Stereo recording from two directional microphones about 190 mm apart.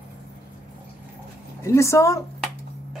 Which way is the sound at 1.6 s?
15° left (ahead or behind).